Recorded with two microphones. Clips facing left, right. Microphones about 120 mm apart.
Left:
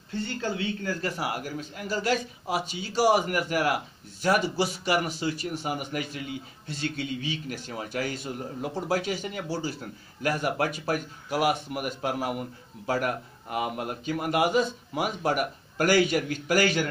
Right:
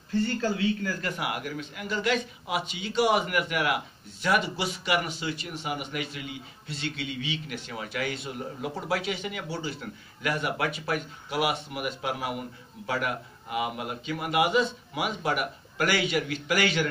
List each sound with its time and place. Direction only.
0.4 s a man's voice: 25° left (ahead or behind); by 16.8 s 40° left (ahead or behind)